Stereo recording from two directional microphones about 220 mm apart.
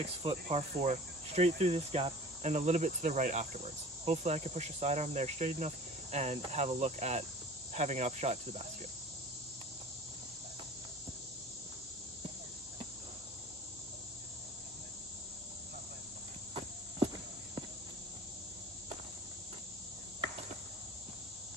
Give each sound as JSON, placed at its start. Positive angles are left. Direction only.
{"t": 0.2, "sound": "cricket", "side_deg": -25}